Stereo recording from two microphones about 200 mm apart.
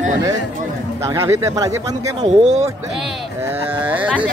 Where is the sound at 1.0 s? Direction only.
15° right (ahead or behind).